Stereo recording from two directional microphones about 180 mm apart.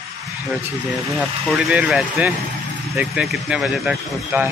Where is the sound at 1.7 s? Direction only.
5° right (ahead or behind).